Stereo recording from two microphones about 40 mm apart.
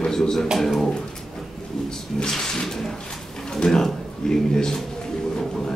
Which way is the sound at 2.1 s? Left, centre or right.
Centre.